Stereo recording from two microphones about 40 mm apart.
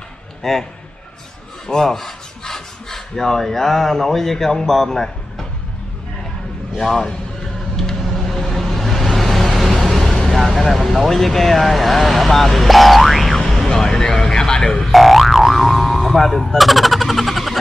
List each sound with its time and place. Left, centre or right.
0.4 s a man's voice: centre
1.7 s speech: centre
6.8 s speech: centre
7.7 s vehicle: centre
13.7 s a sound: centre
14.9 s boing: centre